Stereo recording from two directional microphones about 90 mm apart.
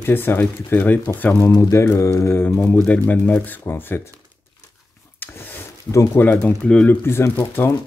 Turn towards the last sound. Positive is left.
turn(degrees=25)  # may be behind; listen again after turning